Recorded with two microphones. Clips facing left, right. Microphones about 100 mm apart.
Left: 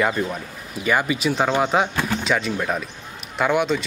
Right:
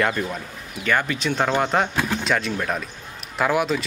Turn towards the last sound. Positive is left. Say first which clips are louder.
# left 1 dB
turn(degrees=0)  # may be behind; listen again after turning